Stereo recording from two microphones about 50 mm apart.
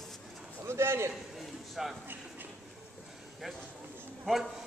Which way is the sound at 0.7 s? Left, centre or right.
Right.